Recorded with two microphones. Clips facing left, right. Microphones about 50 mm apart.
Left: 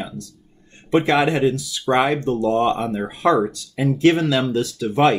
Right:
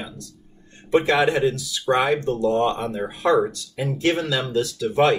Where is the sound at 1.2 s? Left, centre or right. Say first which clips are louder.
Left 1 dB; left.